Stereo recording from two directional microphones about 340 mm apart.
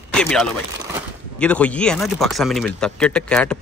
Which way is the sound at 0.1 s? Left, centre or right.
Centre.